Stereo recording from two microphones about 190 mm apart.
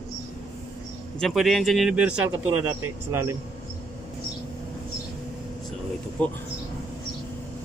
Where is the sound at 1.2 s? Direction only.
Centre (ahead or behind).